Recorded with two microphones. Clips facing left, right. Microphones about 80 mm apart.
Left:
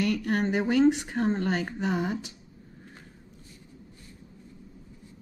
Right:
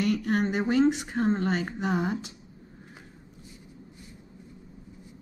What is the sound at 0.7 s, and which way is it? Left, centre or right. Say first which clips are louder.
Speech: left 1 dB; centre.